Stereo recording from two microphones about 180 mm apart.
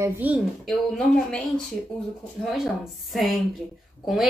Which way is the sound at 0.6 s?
5° left (ahead or behind).